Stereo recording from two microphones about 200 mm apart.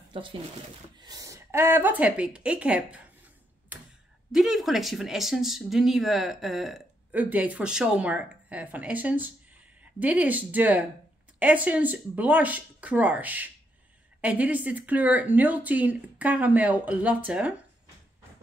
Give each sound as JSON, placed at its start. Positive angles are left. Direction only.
{"t": 0.1, "sound": "speech", "side_deg": -25}
{"t": 4.3, "sound": "speech", "side_deg": 0}